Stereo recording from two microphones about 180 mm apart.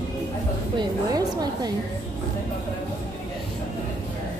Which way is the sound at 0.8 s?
20° right (ahead or behind).